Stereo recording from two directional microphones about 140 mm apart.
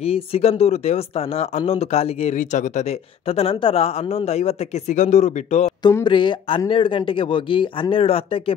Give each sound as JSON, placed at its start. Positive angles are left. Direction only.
{"t": 0.0, "sound": "a woman's voice", "side_deg": 45}
{"t": 3.3, "sound": "a woman's voice", "side_deg": 45}
{"t": 6.0, "sound": "speech", "side_deg": 35}